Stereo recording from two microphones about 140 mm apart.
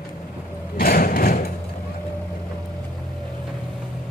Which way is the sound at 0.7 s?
90° left.